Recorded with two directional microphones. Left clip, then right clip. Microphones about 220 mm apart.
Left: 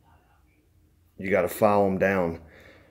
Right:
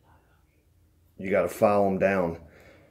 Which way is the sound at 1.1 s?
20° left (ahead or behind).